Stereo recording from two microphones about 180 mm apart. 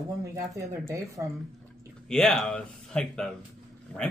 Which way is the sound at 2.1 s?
5° left (ahead or behind).